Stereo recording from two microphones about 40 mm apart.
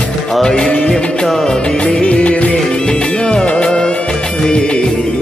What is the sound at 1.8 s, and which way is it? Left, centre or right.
Music of bollywood, left.